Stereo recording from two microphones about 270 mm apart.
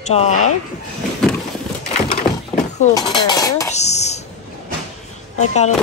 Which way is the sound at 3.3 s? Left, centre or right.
Centre.